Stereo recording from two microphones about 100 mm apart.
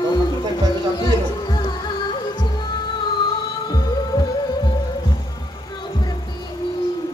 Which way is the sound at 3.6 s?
40° left (ahead or behind).